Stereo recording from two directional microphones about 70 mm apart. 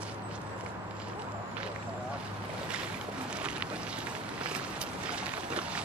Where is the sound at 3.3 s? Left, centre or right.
Centre.